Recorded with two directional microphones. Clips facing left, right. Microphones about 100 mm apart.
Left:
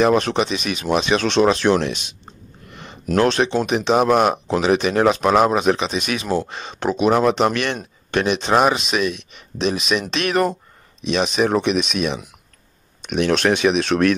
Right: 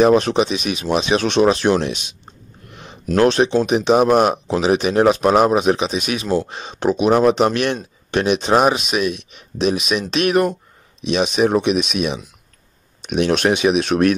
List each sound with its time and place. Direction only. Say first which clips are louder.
0.0 s speech: right 3 dB; 20° right (ahead or behind)
2.7 s a sound: even; 15° right (ahead or behind)
3.2 s speech: right 3 dB; 20° right (ahead or behind)
11.1 s speech: right 2 dB; 10° right (ahead or behind)